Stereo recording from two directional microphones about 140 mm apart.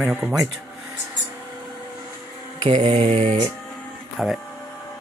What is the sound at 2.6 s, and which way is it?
Mantra, 40° right (ahead or behind).